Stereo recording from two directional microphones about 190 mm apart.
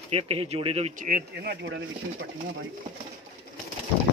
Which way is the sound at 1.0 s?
50° right (ahead or behind).